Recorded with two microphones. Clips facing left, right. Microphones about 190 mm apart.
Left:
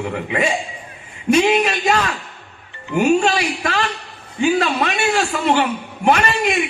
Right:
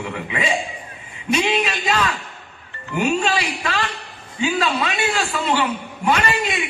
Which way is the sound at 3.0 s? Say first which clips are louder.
Left 4 dB; 60° left (ahead or behind).